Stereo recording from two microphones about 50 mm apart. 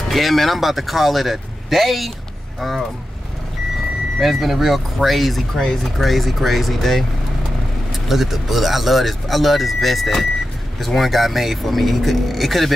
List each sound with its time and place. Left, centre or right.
0.1 s speech: centre
4.2 s speech: centre